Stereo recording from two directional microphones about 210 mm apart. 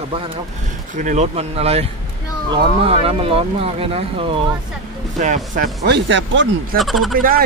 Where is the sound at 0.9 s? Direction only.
35° right (ahead or behind).